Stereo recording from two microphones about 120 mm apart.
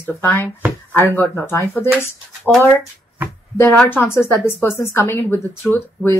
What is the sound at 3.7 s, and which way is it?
Speech, 15° left (ahead or behind).